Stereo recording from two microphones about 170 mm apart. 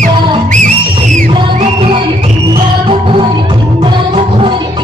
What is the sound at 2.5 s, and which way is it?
Music, 30° right (ahead or behind).